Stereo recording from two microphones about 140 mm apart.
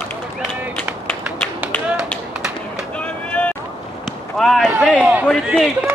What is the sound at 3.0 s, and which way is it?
Vehicle, 10° left (ahead or behind).